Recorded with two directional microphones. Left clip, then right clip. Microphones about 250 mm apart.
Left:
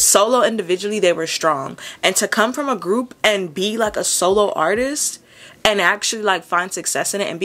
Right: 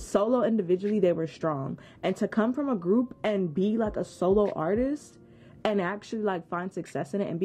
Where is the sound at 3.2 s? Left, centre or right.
Centre.